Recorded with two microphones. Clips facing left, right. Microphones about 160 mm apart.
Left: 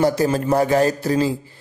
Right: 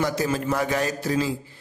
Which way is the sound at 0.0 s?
35° left (ahead or behind).